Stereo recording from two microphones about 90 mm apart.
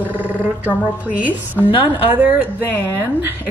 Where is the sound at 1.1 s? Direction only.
15° right (ahead or behind).